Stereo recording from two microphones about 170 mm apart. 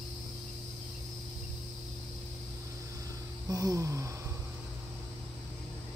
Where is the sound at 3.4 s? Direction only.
20° right (ahead or behind).